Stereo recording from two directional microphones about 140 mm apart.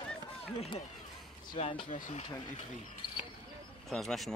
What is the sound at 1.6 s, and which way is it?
Speech, 40° left (ahead or behind).